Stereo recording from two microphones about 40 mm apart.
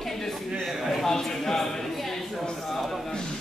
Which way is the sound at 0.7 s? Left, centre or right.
Centre.